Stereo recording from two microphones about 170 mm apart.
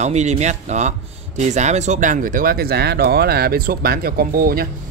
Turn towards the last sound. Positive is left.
turn(degrees=-60)  # may be behind; listen again after turning